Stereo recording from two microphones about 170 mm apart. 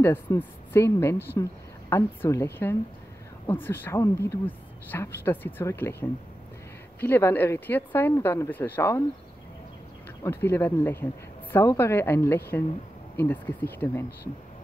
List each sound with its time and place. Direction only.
0.0 s speech: 15° left (ahead or behind)
10.2 s speech: 15° left (ahead or behind)